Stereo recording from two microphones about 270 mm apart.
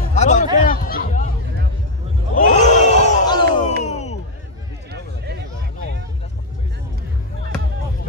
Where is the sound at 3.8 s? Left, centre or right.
Left.